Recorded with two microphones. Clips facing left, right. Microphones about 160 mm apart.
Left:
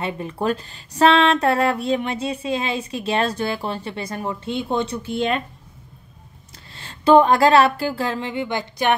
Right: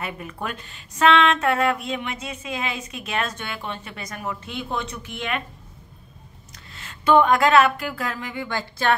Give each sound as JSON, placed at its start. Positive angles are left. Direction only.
{"t": 0.0, "sound": "speech", "side_deg": 30}
{"t": 6.7, "sound": "speech", "side_deg": 30}